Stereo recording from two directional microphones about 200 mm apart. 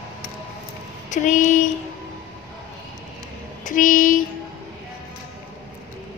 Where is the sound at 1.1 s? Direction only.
40° left (ahead or behind).